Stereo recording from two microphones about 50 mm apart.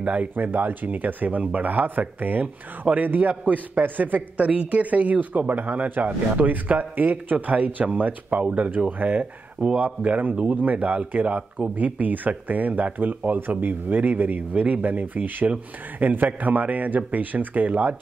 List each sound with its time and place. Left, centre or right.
0.0 s speech: right
4.5 s speech: right